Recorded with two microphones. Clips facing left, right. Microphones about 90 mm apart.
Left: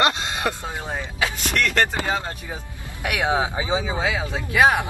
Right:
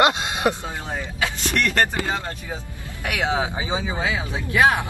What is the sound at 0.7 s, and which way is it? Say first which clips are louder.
Speech: even; 15° left (ahead or behind).